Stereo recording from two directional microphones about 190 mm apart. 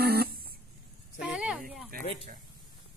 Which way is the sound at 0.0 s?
55° right (ahead or behind).